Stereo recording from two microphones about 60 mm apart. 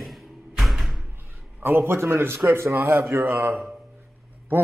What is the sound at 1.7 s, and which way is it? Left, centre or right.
Speech, right.